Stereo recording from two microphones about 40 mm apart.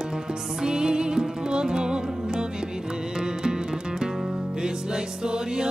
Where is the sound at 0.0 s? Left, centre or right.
Centre.